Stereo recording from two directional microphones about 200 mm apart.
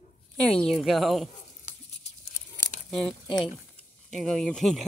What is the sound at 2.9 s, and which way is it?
Speech, centre (ahead or behind).